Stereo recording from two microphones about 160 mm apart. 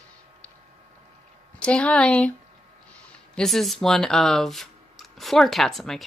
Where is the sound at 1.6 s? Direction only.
5° left (ahead or behind).